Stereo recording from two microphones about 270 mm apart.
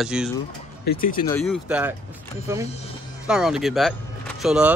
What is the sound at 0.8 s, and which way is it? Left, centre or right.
Speech, left.